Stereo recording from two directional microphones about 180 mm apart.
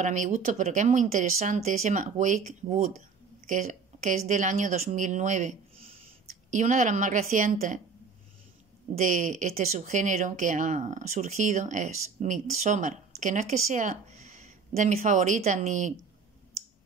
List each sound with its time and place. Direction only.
0.0 s speech: 45° right (ahead or behind)
9.0 s speech: 45° right (ahead or behind)